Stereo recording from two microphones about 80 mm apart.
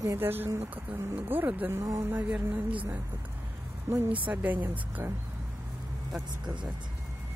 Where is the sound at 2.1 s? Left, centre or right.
Right.